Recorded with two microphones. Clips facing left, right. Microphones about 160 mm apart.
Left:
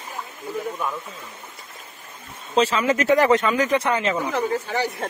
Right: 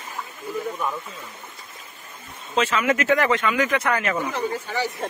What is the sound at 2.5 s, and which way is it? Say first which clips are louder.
Speech: left 2 dB; 35° left (ahead or behind).